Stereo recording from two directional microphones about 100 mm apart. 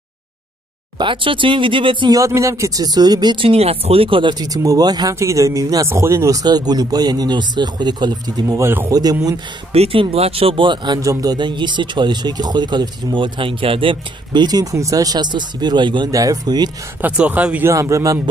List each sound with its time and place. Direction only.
0.9 s speech: 55° right (ahead or behind)
2.0 s speech: 30° right (ahead or behind)
3.4 s speech: 90° right; by 8.5 s 45° right (ahead or behind)
8.5 s speech: 25° right (ahead or behind)
8.9 s speech: 40° right (ahead or behind)
9.7 s speech: 85° right; by 11.0 s 55° right (ahead or behind)
11.0 s speech: 35° right (ahead or behind)
16.1 s speech: 35° right (ahead or behind)
17.0 s speech: 15° right (ahead or behind)
17.6 s speech: 30° right (ahead or behind)